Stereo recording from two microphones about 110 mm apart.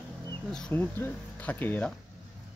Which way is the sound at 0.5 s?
5° left (ahead or behind).